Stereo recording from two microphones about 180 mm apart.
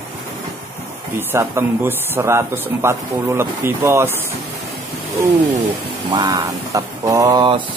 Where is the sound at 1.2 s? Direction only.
15° right (ahead or behind).